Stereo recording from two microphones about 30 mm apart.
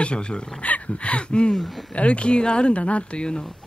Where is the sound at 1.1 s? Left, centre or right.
Left.